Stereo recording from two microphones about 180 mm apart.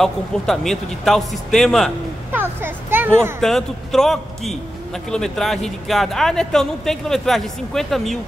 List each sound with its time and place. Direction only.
0.0 s a man's voice: centre (ahead or behind)
2.3 s a child's voice: 10° right (ahead or behind)
3.3 s a man's voice: centre (ahead or behind)